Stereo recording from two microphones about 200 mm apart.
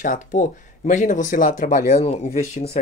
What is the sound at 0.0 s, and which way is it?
Speech, 40° left (ahead or behind).